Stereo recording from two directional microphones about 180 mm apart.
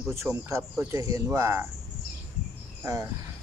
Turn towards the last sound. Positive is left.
turn(degrees=-15)  # may be behind; listen again after turning